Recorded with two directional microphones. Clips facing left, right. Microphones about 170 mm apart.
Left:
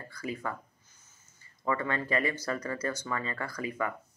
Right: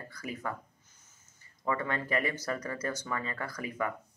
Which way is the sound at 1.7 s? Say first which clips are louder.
Left 1 dB; 15° right (ahead or behind).